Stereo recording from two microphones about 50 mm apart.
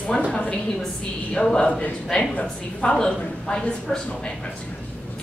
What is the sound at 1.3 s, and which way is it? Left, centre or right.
A woman's voice, centre.